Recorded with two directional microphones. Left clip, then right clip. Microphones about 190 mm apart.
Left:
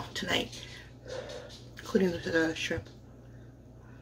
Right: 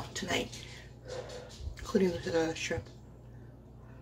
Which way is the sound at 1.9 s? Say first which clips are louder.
Left 2 dB; 5° left (ahead or behind).